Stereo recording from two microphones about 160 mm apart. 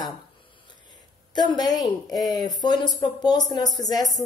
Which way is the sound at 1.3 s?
25° left (ahead or behind).